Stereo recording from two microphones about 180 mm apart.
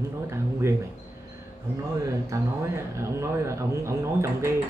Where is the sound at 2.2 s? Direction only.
15° right (ahead or behind).